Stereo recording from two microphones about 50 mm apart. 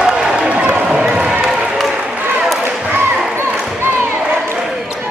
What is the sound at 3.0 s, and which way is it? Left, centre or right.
Basketball bounce, right.